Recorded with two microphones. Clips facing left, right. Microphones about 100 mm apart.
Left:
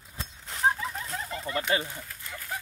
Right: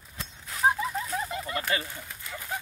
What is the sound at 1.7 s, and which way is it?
Speech, 25° left (ahead or behind).